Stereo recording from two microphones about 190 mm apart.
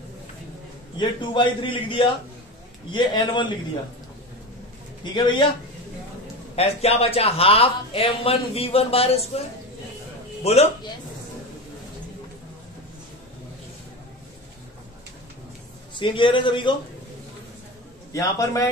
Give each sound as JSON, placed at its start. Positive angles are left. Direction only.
{"t": 0.9, "sound": "a man's voice", "side_deg": 25}
{"t": 5.0, "sound": "a man's voice", "side_deg": 25}
{"t": 6.5, "sound": "a man's voice", "side_deg": 35}
{"t": 10.4, "sound": "a man's voice", "side_deg": 35}
{"t": 15.9, "sound": "a man's voice", "side_deg": 25}
{"t": 18.1, "sound": "a man's voice", "side_deg": 15}